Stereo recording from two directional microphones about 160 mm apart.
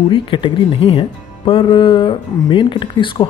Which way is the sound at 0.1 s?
30° left (ahead or behind).